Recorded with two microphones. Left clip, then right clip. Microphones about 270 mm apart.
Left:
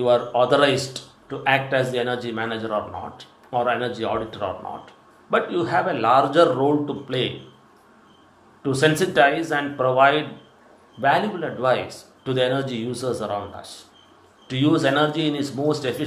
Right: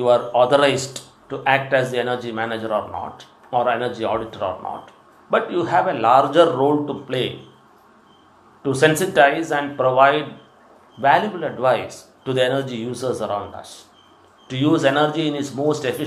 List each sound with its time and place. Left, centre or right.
0.0 s speech: centre
1.6 s speech: centre
2.0 s speech: centre
8.6 s speech: centre